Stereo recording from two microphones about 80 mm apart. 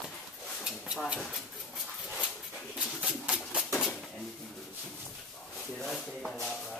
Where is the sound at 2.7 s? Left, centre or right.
Centre.